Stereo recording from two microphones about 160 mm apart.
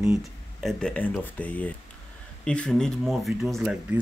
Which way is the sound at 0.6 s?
5° left (ahead or behind).